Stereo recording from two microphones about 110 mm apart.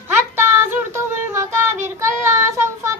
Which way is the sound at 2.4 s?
25° right (ahead or behind).